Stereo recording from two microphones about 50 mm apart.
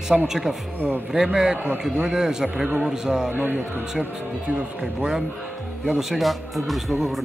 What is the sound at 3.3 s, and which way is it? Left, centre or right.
Speech, right.